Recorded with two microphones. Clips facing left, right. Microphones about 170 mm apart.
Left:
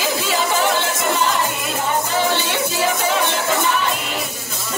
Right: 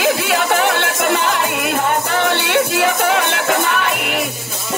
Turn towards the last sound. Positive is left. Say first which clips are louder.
# right 3 dB
turn(degrees=-65)  # may be behind; listen again after turning